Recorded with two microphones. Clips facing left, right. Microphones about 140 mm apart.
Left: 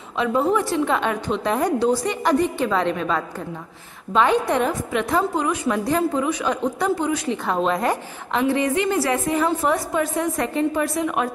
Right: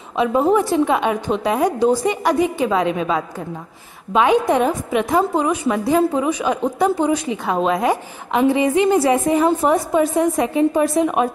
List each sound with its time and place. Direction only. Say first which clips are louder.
0.2 s a woman's voice: right 4 dB; 20° right (ahead or behind)